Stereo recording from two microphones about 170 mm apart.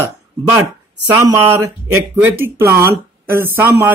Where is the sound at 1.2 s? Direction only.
15° right (ahead or behind).